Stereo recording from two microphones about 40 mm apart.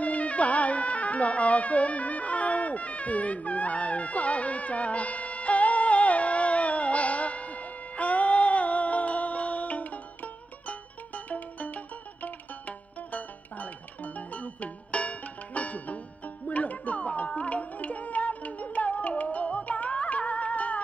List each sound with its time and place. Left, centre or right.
0.0 s music: left